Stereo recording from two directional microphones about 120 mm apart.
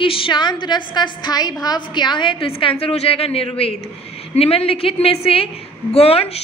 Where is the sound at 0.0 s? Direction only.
45° left (ahead or behind).